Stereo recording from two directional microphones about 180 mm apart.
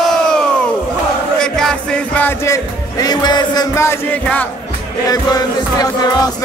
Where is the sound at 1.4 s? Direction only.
5° left (ahead or behind).